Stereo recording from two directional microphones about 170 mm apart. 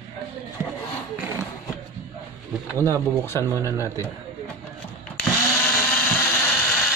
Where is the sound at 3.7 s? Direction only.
15° left (ahead or behind).